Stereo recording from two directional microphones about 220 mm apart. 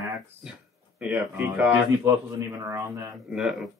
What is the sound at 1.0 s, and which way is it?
A man's voice, 5° right (ahead or behind).